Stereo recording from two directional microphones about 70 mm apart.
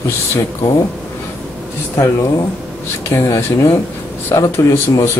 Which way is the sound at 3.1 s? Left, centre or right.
Left.